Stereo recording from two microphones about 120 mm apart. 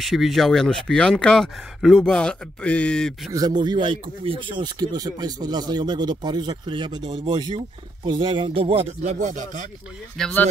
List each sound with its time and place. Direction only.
0.0 s speech: centre (ahead or behind)
3.3 s speech: 35° right (ahead or behind); by 4.6 s 50° right (ahead or behind)
4.7 s speech: 30° right (ahead or behind); by 9.7 s 90° right
10.2 s speech: 5° left (ahead or behind)